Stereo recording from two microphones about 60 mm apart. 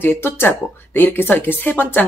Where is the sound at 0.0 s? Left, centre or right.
Left.